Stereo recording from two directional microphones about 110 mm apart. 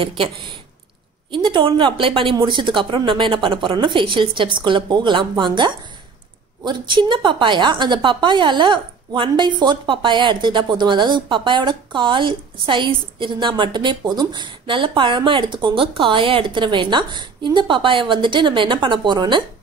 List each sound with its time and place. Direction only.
0.2 s a woman's voice: 45° right (ahead or behind)